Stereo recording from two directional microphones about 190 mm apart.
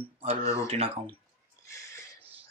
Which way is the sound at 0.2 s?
30° right (ahead or behind).